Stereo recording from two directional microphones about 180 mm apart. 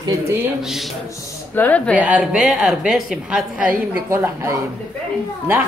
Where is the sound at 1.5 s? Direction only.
10° left (ahead or behind).